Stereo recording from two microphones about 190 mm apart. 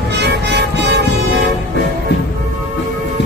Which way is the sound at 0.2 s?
65° right (ahead or behind).